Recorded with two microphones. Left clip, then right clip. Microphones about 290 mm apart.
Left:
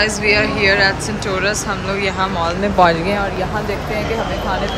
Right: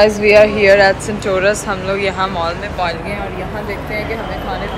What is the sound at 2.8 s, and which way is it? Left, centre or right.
Speech, left.